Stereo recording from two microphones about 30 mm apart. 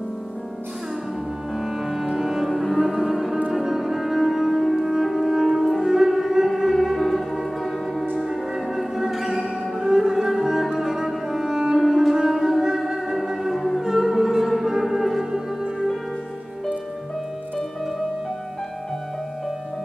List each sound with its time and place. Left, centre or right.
1.6 s music: centre
2.5 s music: centre
11.8 s music: centre